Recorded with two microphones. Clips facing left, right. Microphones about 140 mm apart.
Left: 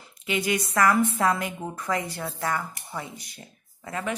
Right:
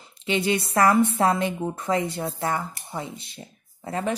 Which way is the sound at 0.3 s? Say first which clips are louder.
Right 3 dB; 30° right (ahead or behind).